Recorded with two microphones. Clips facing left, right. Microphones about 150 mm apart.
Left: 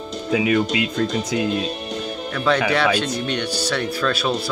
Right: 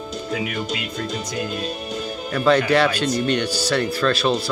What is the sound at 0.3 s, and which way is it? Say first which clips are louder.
Speech: left 9 dB; 90° left.